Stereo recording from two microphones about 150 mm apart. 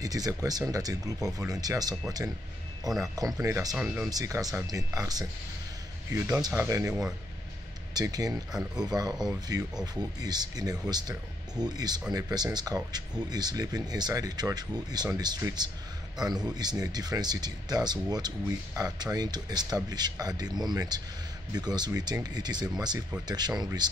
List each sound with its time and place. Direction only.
0.0 s speech: 25° right (ahead or behind)
3.0 s speech: 25° right (ahead or behind)
3.7 s speech: 5° right (ahead or behind)
4.1 s speech: 25° right (ahead or behind)
6.9 s speech: 5° right (ahead or behind)
7.9 s speech: 25° right (ahead or behind)
8.5 s speech: 5° right (ahead or behind)
8.8 s speech: 25° right (ahead or behind)